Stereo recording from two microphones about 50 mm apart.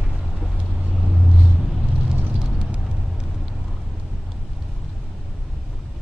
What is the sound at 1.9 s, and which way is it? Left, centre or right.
Vehicle, right.